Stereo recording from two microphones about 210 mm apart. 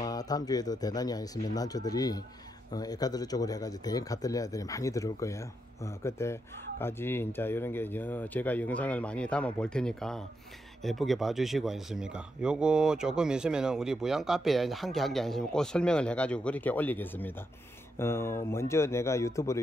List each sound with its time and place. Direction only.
0.0 s speech: 20° left (ahead or behind)